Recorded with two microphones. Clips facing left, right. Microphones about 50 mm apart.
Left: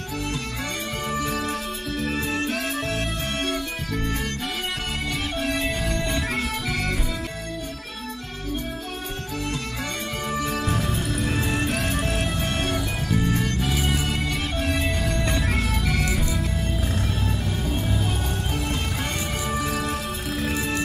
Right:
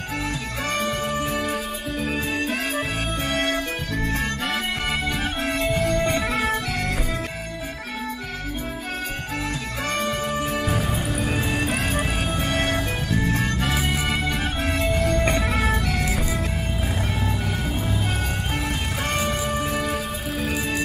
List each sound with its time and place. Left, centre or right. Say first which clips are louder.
1.2 s music: right 2 dB; centre
2.2 s music: right 1 dB; right
10.4 s music: right 1 dB; centre
13.1 s music: even; right
13.7 s music: right 1 dB; centre
15.0 s music: right 4 dB; right
19.8 s music: right 2 dB; centre